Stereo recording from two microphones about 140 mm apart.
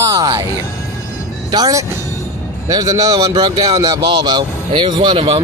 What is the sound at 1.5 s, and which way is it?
A man's voice, 25° right (ahead or behind).